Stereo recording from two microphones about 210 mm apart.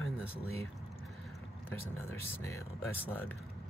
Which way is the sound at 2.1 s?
10° left (ahead or behind).